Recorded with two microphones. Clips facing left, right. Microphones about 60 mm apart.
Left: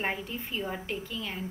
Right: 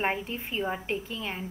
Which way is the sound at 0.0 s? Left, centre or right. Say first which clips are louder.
Right 3 dB; right.